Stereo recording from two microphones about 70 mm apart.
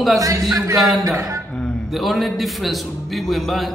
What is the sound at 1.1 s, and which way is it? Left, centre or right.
Speech, right.